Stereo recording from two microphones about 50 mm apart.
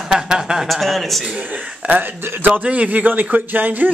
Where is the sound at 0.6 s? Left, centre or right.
Centre.